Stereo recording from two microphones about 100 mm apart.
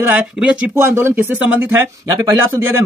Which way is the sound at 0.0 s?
15° right (ahead or behind).